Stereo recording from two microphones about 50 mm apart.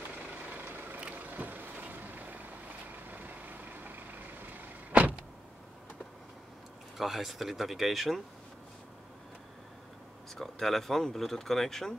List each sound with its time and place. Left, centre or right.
0.5 s vehicle: right
3.8 s vehicle: right
7.0 s speech: centre
10.3 s speech: centre